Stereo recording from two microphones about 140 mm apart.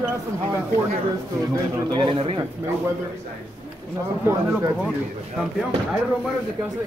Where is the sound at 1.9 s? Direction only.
35° right (ahead or behind).